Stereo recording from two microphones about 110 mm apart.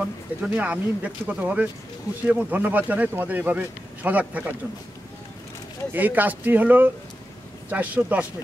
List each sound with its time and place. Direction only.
0.0 s speech: 10° right (ahead or behind)
5.9 s speech: 15° right (ahead or behind)